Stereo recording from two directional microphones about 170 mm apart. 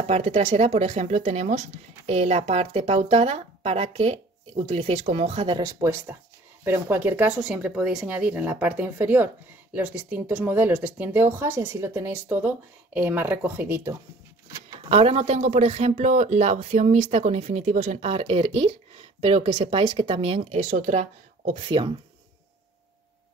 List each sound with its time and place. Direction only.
0.0 s speech: 40° right (ahead or behind)
5.6 s speech: 15° right (ahead or behind)
14.9 s speech: 35° right (ahead or behind)
21.6 s speech: 30° right (ahead or behind)